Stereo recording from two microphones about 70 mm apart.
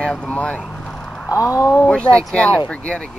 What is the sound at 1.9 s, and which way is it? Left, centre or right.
Speech, centre.